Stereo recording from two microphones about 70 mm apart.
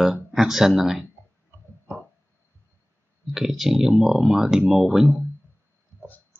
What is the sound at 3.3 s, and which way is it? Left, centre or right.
Speech, centre.